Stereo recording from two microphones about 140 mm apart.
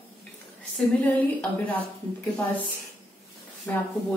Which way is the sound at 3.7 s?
15° left (ahead or behind).